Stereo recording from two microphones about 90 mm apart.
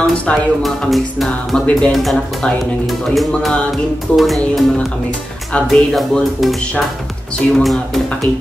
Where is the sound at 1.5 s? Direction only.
5° left (ahead or behind).